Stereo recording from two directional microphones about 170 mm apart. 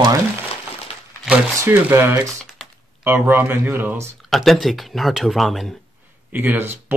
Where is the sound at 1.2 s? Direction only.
10° right (ahead or behind).